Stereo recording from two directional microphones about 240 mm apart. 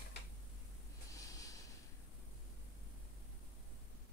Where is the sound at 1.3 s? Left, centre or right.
Centre.